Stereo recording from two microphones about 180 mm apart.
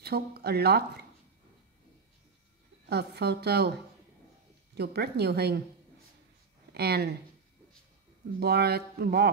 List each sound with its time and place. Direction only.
0.0 s speech: 60° right (ahead or behind)
2.9 s speech: 65° right (ahead or behind)
4.7 s speech: 65° right (ahead or behind)
6.7 s speech: 60° right (ahead or behind)
8.4 s speech: 60° right (ahead or behind)